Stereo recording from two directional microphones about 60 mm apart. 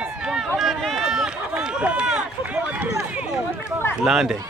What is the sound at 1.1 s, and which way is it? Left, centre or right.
Run, centre.